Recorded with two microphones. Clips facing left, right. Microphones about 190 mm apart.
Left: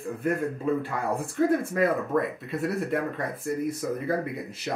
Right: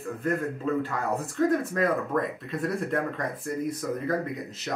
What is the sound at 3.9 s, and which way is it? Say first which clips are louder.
Speech: even; 10° left (ahead or behind).